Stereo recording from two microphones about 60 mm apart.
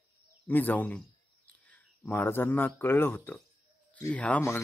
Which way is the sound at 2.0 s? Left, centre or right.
Left.